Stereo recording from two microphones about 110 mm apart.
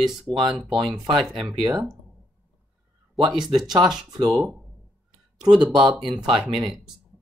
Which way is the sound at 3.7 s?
35° right (ahead or behind).